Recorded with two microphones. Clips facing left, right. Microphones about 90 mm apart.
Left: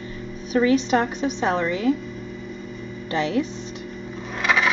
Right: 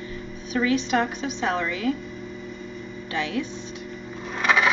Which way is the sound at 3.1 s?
30° left (ahead or behind).